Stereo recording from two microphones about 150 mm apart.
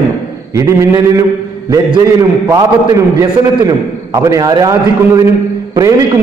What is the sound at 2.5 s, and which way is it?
A man's voice, 20° right (ahead or behind).